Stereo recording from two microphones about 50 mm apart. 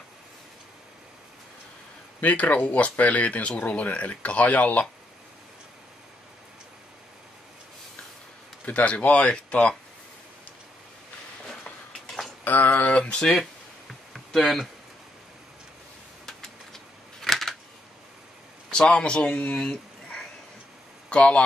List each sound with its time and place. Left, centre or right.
2.1 s speech: left
8.6 s speech: left
12.4 s a sound: left
13.0 s speech: centre
14.1 s speech: centre
16.3 s typewriter: centre
18.7 s speech: centre